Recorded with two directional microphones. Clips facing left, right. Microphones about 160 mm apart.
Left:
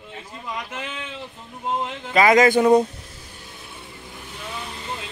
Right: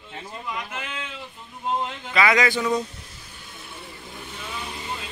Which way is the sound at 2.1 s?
45° left (ahead or behind).